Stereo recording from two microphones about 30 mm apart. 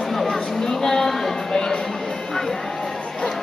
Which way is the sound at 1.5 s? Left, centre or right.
Centre.